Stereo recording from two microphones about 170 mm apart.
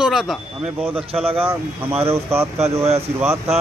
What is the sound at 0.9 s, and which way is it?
Speech, 35° right (ahead or behind).